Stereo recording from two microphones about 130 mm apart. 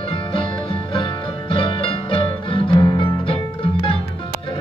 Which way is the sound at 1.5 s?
40° left (ahead or behind).